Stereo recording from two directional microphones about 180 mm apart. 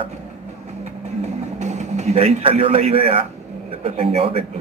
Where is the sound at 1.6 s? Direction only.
40° right (ahead or behind).